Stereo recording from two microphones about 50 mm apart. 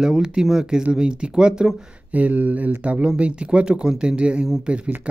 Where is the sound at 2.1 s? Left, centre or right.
Right.